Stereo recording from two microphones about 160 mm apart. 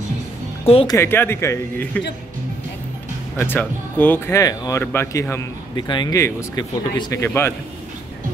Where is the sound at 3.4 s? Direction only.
10° left (ahead or behind).